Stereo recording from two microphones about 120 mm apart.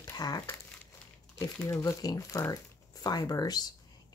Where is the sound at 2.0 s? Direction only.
30° left (ahead or behind).